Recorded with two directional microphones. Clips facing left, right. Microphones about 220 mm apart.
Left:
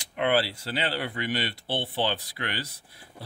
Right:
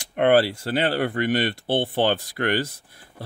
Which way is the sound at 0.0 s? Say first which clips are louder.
Right 7 dB; 50° right (ahead or behind).